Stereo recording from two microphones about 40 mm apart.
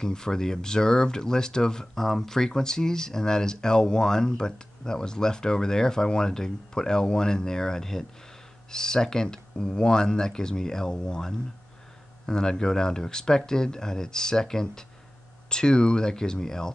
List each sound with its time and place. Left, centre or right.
0.0 s speech: centre
2.0 s speech: centre